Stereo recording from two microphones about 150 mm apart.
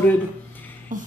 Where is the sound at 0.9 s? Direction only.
60° right (ahead or behind).